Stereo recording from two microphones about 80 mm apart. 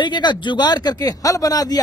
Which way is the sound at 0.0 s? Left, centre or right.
Left.